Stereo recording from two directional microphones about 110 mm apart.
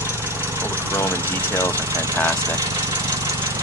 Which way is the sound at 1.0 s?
25° left (ahead or behind).